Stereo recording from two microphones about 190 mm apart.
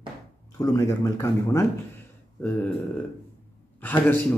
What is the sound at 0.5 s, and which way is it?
A man's voice, 15° left (ahead or behind).